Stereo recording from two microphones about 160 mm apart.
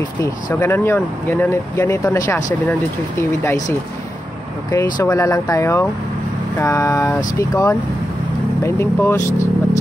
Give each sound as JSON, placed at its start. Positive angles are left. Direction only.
{"t": 0.2, "sound": "speech", "side_deg": 20}
{"t": 4.6, "sound": "speech", "side_deg": 20}